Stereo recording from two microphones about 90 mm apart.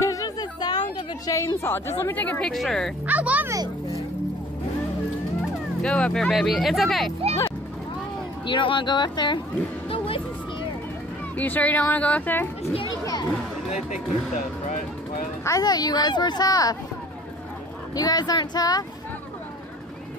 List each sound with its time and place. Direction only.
0.0 s a sound: 40° left (ahead or behind)
1.6 s speech: 25° left (ahead or behind)
2.4 s speech: 5° left (ahead or behind)
3.1 s speech: 15° right (ahead or behind)
5.8 s speech: 10° left (ahead or behind)
6.3 s speech: centre (ahead or behind)
8.5 s speech: 65° left (ahead or behind)
9.8 s music: 90° left
11.3 s speech: 20° left (ahead or behind)
12.8 s a sound: 45° left (ahead or behind)
15.4 s a child's voice: 45° left (ahead or behind)
17.9 s a child's voice: 45° left (ahead or behind)